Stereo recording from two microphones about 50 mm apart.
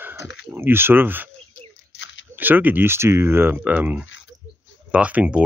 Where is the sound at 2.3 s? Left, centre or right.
Right.